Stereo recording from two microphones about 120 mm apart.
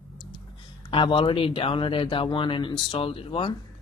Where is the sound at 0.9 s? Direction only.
45° left (ahead or behind).